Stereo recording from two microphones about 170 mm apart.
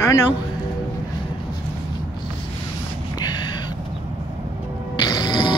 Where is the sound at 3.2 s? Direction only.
25° left (ahead or behind).